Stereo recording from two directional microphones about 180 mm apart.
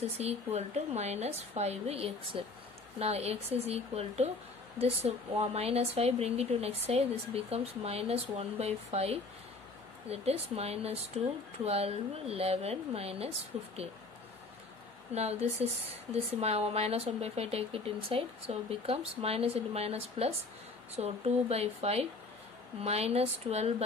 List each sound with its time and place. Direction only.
0.2 s speech: 35° right (ahead or behind)
15.1 s speech: 35° right (ahead or behind)